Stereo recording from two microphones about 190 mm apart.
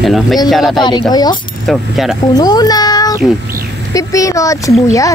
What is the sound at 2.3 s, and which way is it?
A child's voice, 20° left (ahead or behind).